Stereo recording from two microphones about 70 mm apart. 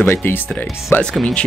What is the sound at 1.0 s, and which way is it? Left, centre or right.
Speech, centre.